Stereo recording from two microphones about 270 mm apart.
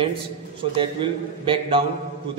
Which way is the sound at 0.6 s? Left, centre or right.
Centre.